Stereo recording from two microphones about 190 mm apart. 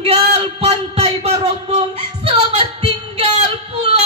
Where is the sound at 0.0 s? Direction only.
30° right (ahead or behind).